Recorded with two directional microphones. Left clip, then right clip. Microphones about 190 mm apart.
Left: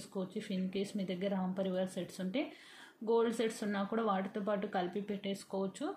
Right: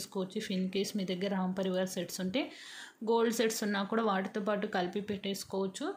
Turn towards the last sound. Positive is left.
turn(degrees=-20)  # may be behind; listen again after turning